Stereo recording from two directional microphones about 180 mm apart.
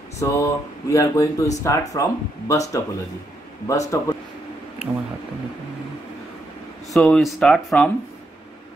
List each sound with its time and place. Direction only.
0.2 s speech: 15° left (ahead or behind)
6.9 s speech: centre (ahead or behind)